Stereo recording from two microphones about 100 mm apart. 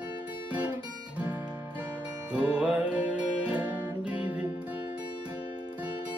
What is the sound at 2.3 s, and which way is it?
Music, 10° right (ahead or behind).